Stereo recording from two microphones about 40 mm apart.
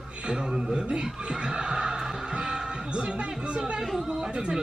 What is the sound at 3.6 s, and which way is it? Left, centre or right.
Speech, centre.